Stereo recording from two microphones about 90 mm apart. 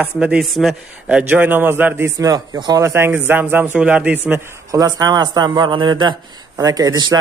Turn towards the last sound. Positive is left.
turn(degrees=-45)  # may be behind; listen again after turning